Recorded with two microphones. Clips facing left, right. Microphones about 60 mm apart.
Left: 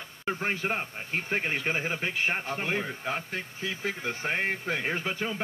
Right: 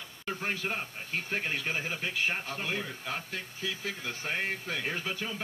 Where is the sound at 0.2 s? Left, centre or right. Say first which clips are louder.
Left 4 dB; left.